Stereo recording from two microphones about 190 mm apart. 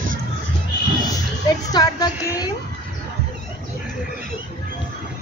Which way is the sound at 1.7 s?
20° left (ahead or behind).